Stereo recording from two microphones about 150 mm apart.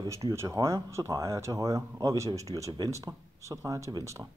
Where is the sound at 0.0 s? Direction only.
20° right (ahead or behind).